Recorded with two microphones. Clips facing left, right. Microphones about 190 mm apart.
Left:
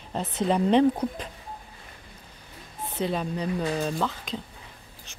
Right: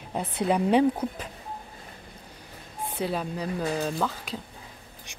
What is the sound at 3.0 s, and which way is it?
Speech, 5° right (ahead or behind).